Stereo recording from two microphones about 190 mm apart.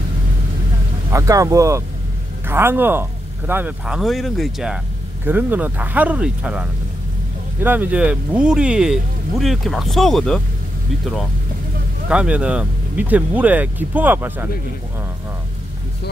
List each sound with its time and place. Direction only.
1.1 s speech: 15° right (ahead or behind); by 10.4 s centre (ahead or behind)
12.1 s speech: 5° right (ahead or behind)